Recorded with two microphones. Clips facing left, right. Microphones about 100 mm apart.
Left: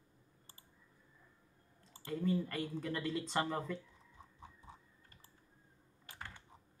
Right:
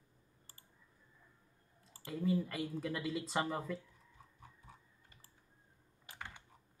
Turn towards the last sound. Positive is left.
turn(degrees=-15)  # may be behind; listen again after turning